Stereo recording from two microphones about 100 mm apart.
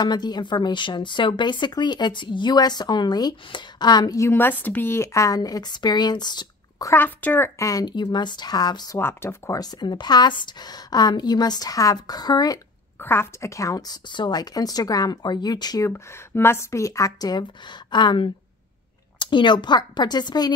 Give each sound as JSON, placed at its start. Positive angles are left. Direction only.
{"t": 0.0, "sound": "a woman's voice", "side_deg": 45}
{"t": 4.2, "sound": "a woman's voice", "side_deg": 20}
{"t": 6.9, "sound": "a woman's voice", "side_deg": 20}
{"t": 9.0, "sound": "speech", "side_deg": 25}
{"t": 9.6, "sound": "a woman's voice", "side_deg": 45}
{"t": 13.0, "sound": "a woman's voice", "side_deg": 25}
{"t": 15.9, "sound": "a woman's voice", "side_deg": 25}